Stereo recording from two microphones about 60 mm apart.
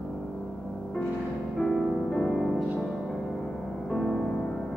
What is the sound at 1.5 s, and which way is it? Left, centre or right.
Music, centre.